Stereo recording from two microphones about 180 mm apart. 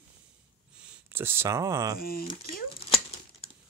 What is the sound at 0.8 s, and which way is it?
Speech, 10° right (ahead or behind).